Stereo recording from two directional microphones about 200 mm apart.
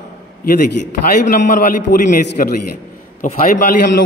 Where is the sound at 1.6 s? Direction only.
45° left (ahead or behind).